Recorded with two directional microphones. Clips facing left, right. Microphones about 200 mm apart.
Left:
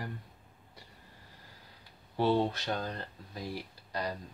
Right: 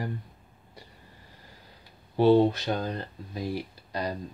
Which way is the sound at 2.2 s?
20° right (ahead or behind).